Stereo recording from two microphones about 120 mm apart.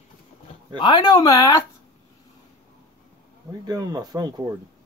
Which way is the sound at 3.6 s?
30° right (ahead or behind).